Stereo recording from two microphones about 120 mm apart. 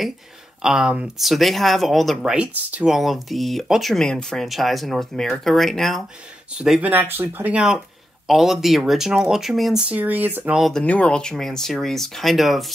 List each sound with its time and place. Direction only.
0.6 s speech: 5° right (ahead or behind)
6.9 s speech: 15° right (ahead or behind)
10.6 s speech: 5° left (ahead or behind)